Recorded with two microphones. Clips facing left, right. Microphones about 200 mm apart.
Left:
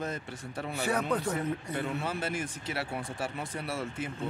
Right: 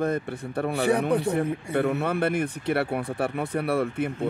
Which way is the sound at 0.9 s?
15° right (ahead or behind).